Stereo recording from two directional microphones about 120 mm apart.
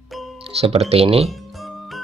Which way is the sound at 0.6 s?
60° right (ahead or behind).